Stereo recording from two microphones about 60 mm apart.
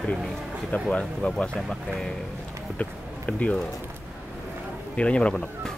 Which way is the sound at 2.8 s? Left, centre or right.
Left.